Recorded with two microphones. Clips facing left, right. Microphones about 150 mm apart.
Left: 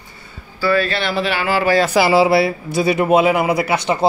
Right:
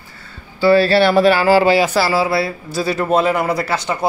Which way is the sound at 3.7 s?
20° left (ahead or behind).